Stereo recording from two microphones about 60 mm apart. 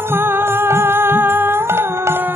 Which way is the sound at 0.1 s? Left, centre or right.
Right.